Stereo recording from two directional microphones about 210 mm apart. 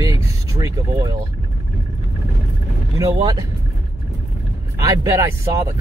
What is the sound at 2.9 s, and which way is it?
Speech, 20° right (ahead or behind).